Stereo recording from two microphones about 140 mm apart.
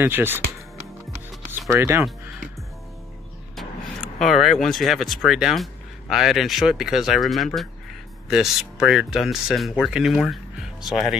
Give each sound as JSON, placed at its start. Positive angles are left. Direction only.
{"t": 0.0, "sound": "speech", "side_deg": -15}
{"t": 1.7, "sound": "speech", "side_deg": -20}
{"t": 4.2, "sound": "speech", "side_deg": 0}